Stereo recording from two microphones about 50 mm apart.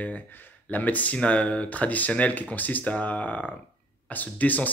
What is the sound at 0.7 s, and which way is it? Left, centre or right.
Speech, left.